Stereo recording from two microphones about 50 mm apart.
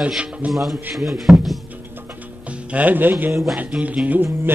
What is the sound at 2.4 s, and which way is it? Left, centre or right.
Speech, right.